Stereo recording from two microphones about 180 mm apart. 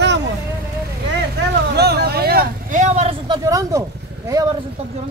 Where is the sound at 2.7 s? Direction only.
40° right (ahead or behind).